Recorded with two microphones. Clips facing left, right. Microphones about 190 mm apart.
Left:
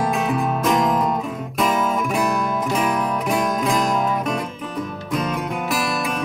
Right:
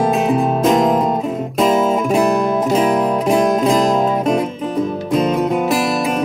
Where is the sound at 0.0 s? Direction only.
25° right (ahead or behind).